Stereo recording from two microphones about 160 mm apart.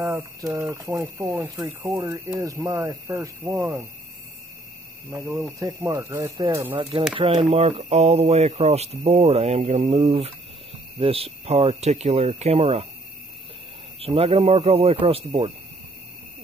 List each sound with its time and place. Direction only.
0.0 s speech: 20° right (ahead or behind)
5.1 s speech: 20° right (ahead or behind)
6.8 s speech: 30° right (ahead or behind)
13.9 s speech: 40° right (ahead or behind)